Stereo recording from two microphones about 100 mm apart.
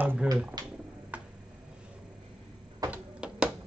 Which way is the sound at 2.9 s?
10° right (ahead or behind).